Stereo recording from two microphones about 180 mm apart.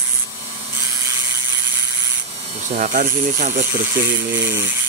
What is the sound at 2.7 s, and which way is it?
Speech, 50° right (ahead or behind).